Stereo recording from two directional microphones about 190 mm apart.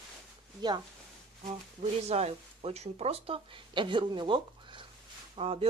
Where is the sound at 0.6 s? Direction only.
20° right (ahead or behind).